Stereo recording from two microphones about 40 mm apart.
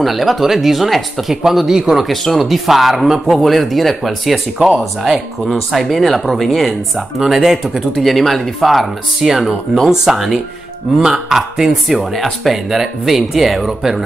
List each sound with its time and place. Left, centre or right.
0.0 s speech: centre
2.3 s speech: centre
4.6 s speech: centre
5.5 s speech: centre
7.2 s speech: centre
8.0 s speech: centre